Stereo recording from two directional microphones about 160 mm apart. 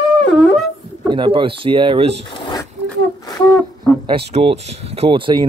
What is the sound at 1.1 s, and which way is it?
Speech, 30° right (ahead or behind).